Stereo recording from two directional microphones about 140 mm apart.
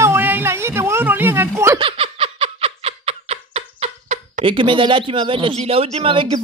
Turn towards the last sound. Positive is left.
turn(degrees=-40)  # may be behind; listen again after turning